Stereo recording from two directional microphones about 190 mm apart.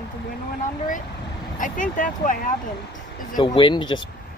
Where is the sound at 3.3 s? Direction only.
25° left (ahead or behind).